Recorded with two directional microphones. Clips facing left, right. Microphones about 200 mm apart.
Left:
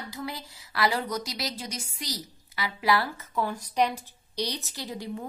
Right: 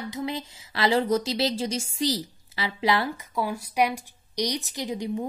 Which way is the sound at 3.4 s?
10° right (ahead or behind).